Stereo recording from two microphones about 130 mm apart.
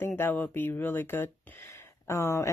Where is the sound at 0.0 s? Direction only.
15° left (ahead or behind).